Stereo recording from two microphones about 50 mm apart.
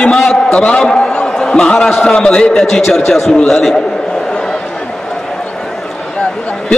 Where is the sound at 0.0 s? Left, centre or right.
Centre.